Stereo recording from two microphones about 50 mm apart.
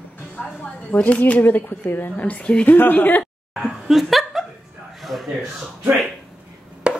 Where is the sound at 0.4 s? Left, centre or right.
Left.